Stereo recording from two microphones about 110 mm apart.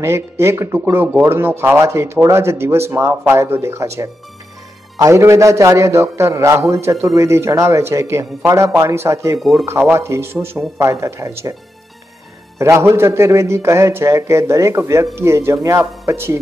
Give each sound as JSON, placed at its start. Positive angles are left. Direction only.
{"t": 0.0, "sound": "a man's voice", "side_deg": -25}
{"t": 9.4, "sound": "speech", "side_deg": 0}
{"t": 9.7, "sound": "a man's voice", "side_deg": -25}
{"t": 12.5, "sound": "a man's voice", "side_deg": -25}